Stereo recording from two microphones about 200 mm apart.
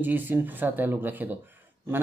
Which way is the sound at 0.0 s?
10° right (ahead or behind).